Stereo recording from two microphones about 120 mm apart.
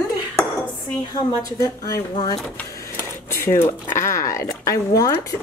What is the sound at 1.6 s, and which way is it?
Speech, 30° left (ahead or behind).